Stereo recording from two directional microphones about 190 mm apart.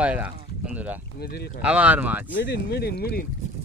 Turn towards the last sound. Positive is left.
turn(degrees=55)  # may be behind; listen again after turning